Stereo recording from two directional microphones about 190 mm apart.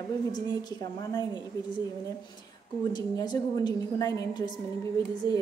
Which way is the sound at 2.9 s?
20° left (ahead or behind).